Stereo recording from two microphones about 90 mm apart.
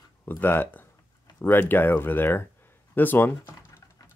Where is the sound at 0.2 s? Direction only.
25° left (ahead or behind).